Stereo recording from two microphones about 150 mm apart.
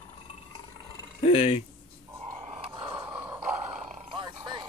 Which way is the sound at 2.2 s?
25° right (ahead or behind).